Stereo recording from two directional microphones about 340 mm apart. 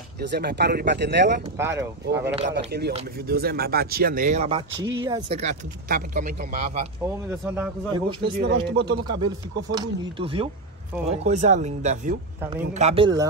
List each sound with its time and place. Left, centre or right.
0.2 s speech: right
1.6 s speech: centre
2.4 s speech: right
7.2 s speech: centre
8.2 s speech: right
9.2 s speech: centre
12.4 s speech: centre
12.7 s speech: centre